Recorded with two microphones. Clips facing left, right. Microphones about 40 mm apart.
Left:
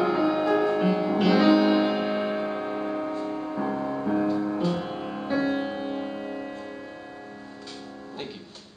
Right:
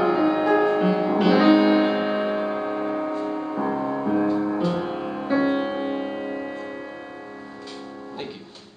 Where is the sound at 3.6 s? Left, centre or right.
Centre.